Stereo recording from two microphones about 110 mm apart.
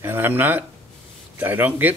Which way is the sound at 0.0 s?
20° right (ahead or behind).